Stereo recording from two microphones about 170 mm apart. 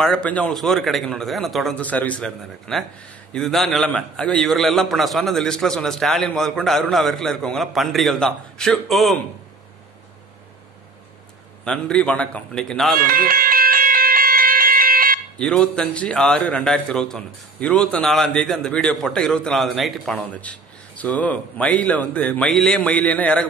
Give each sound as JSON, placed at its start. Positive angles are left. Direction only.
{"t": 0.0, "sound": "a man's voice", "side_deg": 5}
{"t": 11.6, "sound": "a man's voice", "side_deg": 5}
{"t": 13.0, "sound": "music", "side_deg": -55}
{"t": 15.3, "sound": "a man's voice", "side_deg": 5}